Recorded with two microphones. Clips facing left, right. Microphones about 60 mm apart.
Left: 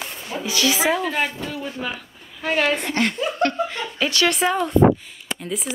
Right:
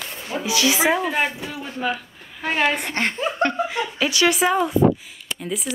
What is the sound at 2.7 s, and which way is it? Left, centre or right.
Speech, right.